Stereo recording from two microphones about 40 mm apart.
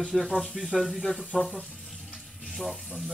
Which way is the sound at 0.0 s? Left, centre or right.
Centre.